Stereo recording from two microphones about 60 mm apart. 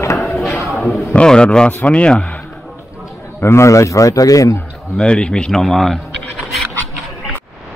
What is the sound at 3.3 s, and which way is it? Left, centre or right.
A man's voice, left.